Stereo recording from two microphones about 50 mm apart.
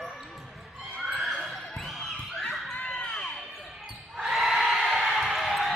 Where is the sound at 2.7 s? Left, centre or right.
Left.